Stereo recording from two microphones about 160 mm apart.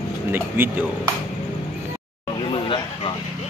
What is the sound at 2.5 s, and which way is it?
Vehicle, 30° left (ahead or behind).